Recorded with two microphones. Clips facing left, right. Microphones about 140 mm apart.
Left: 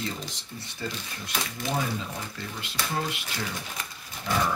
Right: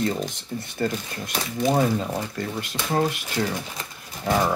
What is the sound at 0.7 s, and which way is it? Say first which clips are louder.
Speech: right 9 dB; 50° right (ahead or behind).